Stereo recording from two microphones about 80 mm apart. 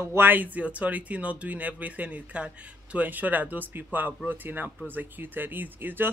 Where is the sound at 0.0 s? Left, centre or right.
Right.